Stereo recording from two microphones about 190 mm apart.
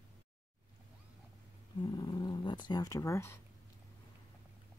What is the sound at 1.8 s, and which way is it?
Speech, 20° left (ahead or behind).